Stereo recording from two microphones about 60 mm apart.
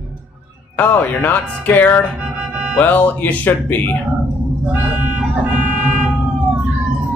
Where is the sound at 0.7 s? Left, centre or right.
Left.